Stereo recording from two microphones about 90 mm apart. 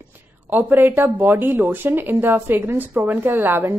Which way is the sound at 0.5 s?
20° right (ahead or behind).